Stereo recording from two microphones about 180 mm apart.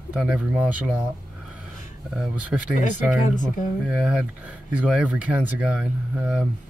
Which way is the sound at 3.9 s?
5° right (ahead or behind).